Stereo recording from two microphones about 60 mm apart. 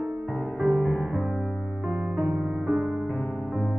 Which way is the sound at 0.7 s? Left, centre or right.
Centre.